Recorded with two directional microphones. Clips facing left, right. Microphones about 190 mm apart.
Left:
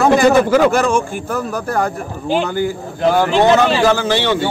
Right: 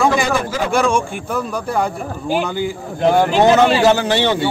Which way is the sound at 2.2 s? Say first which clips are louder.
Left 2 dB; 10° right (ahead or behind).